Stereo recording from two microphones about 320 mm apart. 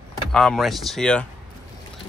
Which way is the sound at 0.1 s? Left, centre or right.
Centre.